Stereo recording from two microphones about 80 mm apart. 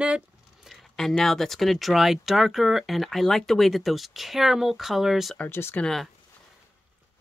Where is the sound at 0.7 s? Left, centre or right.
Centre.